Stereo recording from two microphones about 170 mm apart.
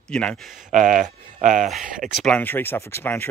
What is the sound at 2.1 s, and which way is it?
Speech, 5° left (ahead or behind).